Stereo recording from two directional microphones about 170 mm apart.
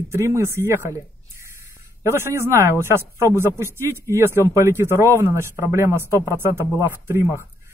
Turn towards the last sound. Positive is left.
turn(degrees=-15)  # may be behind; listen again after turning